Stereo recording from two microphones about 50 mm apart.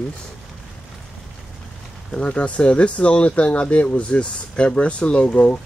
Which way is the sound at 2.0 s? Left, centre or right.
Left.